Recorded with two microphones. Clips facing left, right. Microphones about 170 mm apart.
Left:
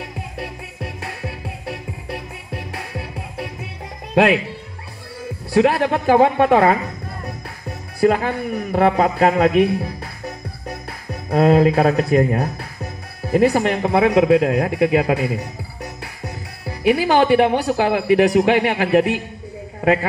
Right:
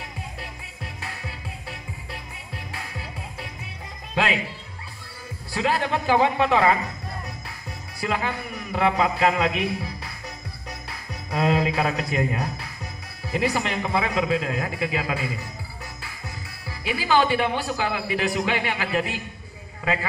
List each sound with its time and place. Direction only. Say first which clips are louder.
0.0 s music: left 7 dB; 65° left (ahead or behind)
4.1 s speech: left 10 dB; 60° left (ahead or behind)
5.5 s a woman's voice: left 9 dB; 60° left (ahead or behind)
8.0 s a man's voice: left 10 dB; 50° left (ahead or behind)